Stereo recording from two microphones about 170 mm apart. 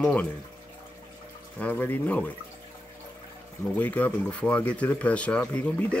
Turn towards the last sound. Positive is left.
turn(degrees=10)  # may be behind; listen again after turning